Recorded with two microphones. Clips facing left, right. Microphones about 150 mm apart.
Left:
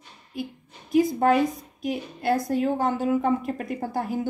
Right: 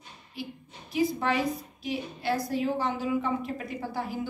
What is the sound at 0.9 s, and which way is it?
A woman's voice, 50° left (ahead or behind).